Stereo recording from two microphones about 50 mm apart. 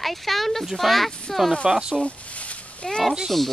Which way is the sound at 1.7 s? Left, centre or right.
Centre.